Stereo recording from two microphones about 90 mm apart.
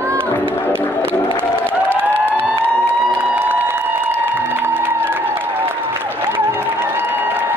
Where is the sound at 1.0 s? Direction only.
25° right (ahead or behind).